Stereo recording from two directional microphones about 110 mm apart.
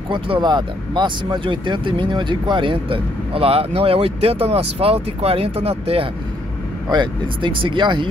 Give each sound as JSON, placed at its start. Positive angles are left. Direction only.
{"t": 0.1, "sound": "speech", "side_deg": -45}
{"t": 6.9, "sound": "speech", "side_deg": -45}